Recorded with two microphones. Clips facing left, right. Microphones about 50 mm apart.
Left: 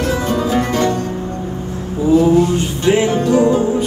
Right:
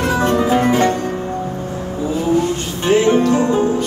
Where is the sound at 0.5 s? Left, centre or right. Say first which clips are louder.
Even; right.